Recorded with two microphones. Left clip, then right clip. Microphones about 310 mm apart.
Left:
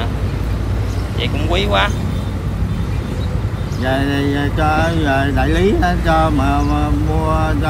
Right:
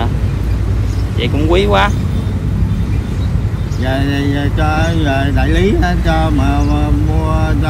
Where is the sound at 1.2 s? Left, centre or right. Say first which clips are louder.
Right 5 dB; centre.